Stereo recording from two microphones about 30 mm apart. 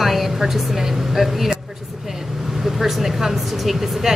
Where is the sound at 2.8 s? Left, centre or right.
Centre.